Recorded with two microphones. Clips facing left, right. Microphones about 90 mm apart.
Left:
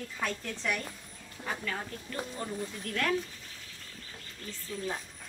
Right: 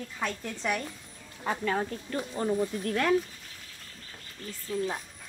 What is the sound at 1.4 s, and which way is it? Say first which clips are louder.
Speech: right 7 dB; 40° right (ahead or behind).